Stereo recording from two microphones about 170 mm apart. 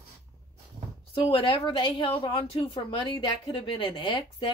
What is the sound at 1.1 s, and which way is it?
A woman's voice, 30° left (ahead or behind).